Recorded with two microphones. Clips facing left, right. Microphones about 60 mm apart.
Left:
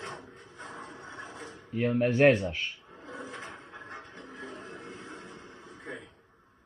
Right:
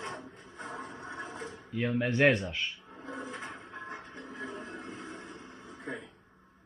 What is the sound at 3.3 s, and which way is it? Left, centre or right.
Music, centre.